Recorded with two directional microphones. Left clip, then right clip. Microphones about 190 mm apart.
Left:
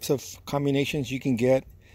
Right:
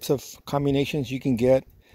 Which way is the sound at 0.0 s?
10° right (ahead or behind).